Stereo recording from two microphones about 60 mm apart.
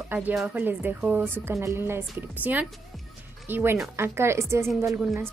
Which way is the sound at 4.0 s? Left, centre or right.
Right.